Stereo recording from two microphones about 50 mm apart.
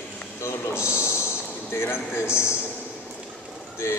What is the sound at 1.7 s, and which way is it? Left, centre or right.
Speech, left.